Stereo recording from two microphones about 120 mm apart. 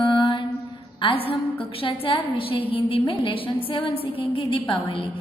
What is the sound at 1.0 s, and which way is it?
Music, 50° left (ahead or behind).